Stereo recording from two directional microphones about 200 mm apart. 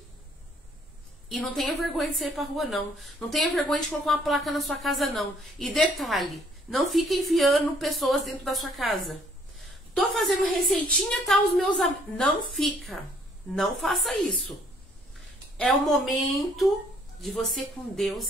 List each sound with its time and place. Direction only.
1.3 s a woman's voice: centre (ahead or behind)
9.6 s a sound: centre (ahead or behind)
10.6 s a woman's voice: centre (ahead or behind)
15.5 s a woman's voice: centre (ahead or behind)